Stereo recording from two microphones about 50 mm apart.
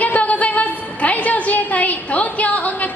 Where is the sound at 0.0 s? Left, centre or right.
Left.